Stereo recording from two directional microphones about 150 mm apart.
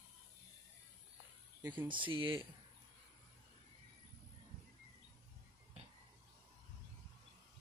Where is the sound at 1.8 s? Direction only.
35° right (ahead or behind).